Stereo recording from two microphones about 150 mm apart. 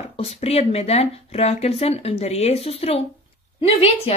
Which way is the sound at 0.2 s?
45° left (ahead or behind).